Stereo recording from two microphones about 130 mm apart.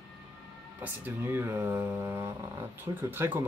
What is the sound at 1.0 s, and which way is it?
Speech, 15° right (ahead or behind).